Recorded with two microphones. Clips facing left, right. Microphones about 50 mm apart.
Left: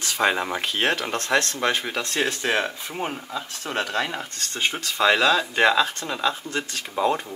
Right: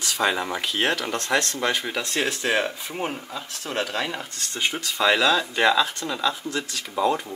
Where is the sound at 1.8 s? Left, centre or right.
Centre.